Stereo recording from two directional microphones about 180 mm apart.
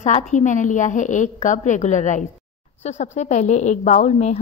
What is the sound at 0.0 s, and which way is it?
A woman's voice, 40° left (ahead or behind).